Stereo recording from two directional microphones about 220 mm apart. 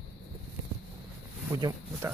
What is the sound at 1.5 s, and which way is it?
Speech, 15° right (ahead or behind).